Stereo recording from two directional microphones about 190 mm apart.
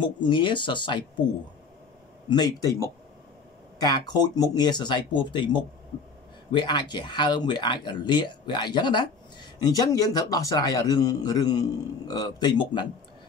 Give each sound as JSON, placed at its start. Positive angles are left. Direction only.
{"t": 0.0, "sound": "speech", "side_deg": 25}
{"t": 2.2, "sound": "speech", "side_deg": 20}